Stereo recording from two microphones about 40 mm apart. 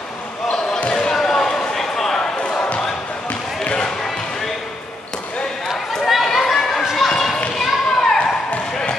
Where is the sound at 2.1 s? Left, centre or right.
Left.